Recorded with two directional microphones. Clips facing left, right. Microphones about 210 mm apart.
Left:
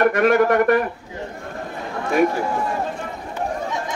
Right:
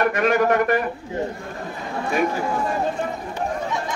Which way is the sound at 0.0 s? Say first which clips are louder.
Left 3 dB; 55° left (ahead or behind).